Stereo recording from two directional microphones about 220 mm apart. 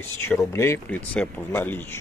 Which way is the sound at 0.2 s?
10° left (ahead or behind).